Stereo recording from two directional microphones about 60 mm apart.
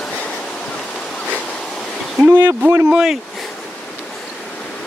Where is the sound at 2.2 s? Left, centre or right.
Right.